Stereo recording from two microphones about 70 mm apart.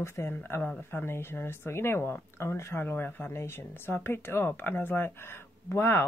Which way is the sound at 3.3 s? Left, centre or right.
Left.